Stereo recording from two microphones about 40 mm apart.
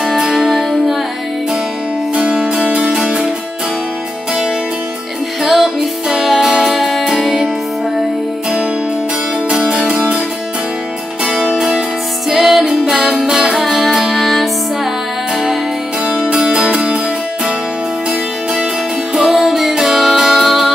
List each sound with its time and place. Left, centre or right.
0.2 s music: centre
0.5 s music: centre
2.1 s music: right
5.4 s music: centre
9.5 s music: right
11.2 s music: right
12.3 s music: centre
16.1 s music: right
19.1 s music: centre